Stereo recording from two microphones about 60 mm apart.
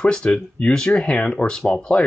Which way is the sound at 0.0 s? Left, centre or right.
Centre.